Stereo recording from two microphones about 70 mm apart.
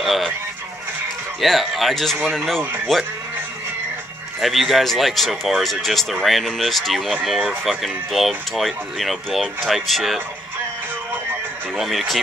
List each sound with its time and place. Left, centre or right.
0.0 s speech: centre
1.4 s speech: centre
2.6 s speech: right
4.4 s speech: centre
11.7 s speech: centre